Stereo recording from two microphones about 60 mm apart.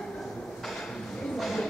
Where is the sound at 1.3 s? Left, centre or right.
Centre.